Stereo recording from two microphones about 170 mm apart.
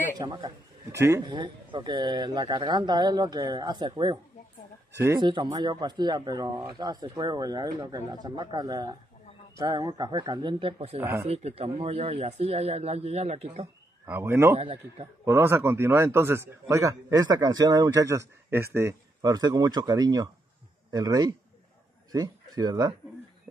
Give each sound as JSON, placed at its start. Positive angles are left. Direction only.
{"t": 0.2, "sound": "speech", "side_deg": -30}
{"t": 0.9, "sound": "speech", "side_deg": -15}
{"t": 4.9, "sound": "speech", "side_deg": -15}
{"t": 5.2, "sound": "speech", "side_deg": -30}
{"t": 11.0, "sound": "a man's voice", "side_deg": -15}
{"t": 11.2, "sound": "speech", "side_deg": -35}
{"t": 14.0, "sound": "a man's voice", "side_deg": -15}
{"t": 14.6, "sound": "speech", "side_deg": -35}
{"t": 15.2, "sound": "a man's voice", "side_deg": -15}